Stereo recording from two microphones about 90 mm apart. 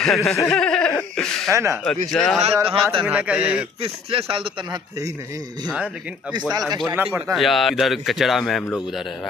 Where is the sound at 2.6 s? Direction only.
75° right (ahead or behind).